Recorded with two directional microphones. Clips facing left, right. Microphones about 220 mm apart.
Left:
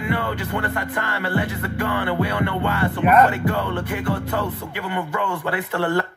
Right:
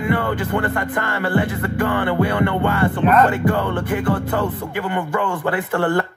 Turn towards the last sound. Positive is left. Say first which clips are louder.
# right 3 dB
turn(degrees=-50)  # may be behind; listen again after turning